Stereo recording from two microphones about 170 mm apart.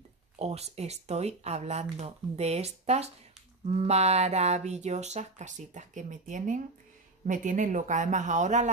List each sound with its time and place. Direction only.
0.4 s speech: 40° right (ahead or behind)